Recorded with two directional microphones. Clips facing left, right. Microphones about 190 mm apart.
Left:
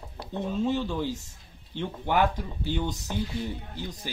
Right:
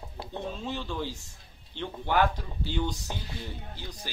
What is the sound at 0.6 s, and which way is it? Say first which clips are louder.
Speech: left 7 dB; 15° left (ahead or behind).